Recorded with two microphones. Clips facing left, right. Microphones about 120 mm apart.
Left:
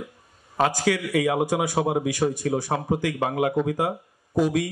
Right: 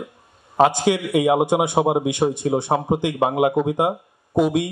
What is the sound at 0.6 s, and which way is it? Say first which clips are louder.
A man's voice: right 5 dB; 25° right (ahead or behind).